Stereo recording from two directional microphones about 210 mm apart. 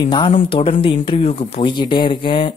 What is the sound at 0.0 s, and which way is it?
Speech, 20° left (ahead or behind).